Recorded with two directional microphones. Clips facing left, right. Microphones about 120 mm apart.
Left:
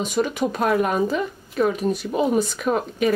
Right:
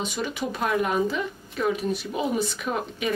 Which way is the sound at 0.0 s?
45° left (ahead or behind).